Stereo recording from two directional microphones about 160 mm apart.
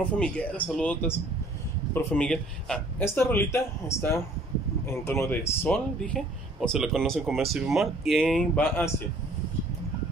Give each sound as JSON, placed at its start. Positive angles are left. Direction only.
{"t": 0.2, "sound": "speech", "side_deg": 10}